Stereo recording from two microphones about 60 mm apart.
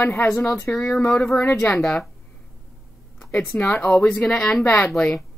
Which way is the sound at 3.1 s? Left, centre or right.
Centre.